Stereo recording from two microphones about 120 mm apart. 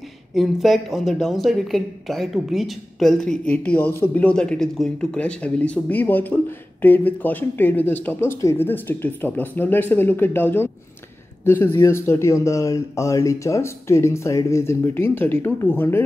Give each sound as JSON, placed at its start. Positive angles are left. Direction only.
{"t": 0.3, "sound": "speech", "side_deg": 0}